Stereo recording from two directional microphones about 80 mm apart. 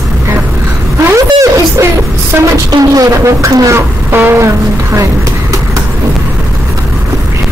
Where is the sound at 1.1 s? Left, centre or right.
Right.